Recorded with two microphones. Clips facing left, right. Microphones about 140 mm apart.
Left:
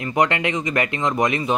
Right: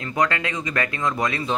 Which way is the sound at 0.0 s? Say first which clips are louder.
Left 3 dB; 20° left (ahead or behind).